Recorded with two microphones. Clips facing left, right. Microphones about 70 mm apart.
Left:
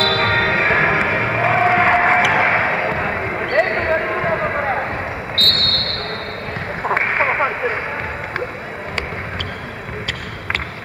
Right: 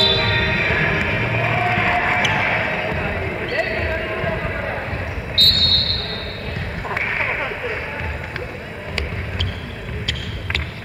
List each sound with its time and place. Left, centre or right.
0.0 s music: left
5.3 s basketball bounce: left
6.8 s a sound: left